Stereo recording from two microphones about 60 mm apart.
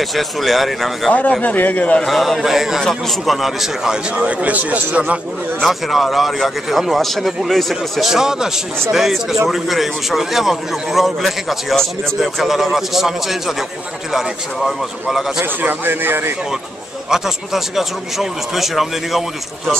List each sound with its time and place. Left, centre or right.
0.0 s speech: centre
1.1 s a man's voice: left
2.0 s a man's voice: centre; by 5.2 s right
5.6 s a man's voice: centre
15.6 s speech: right
17.1 s speech: centre